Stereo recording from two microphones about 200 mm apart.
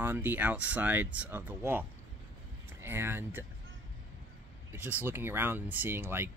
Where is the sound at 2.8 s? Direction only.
10° right (ahead or behind).